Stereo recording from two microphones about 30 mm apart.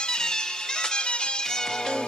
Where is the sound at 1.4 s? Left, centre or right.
Left.